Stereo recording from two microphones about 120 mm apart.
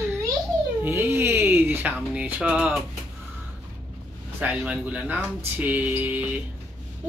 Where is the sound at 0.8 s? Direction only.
20° right (ahead or behind).